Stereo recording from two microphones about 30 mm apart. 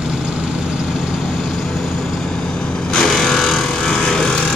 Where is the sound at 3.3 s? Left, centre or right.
Centre.